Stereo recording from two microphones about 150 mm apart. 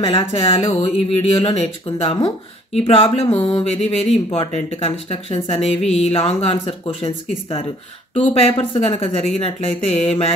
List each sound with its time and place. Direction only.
0.0 s speech: 35° left (ahead or behind)
3.3 s a sound: 5° left (ahead or behind)
3.8 s speech: 45° left (ahead or behind)